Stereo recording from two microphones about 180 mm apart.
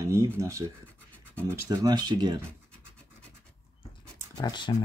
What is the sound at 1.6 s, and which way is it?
Speech, 20° right (ahead or behind).